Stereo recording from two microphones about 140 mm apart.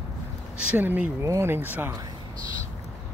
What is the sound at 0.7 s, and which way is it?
Speech, 10° right (ahead or behind).